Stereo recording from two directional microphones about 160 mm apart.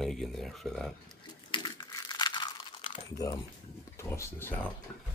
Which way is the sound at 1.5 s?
25° left (ahead or behind).